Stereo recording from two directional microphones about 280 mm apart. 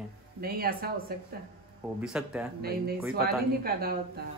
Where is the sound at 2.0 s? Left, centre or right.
Centre.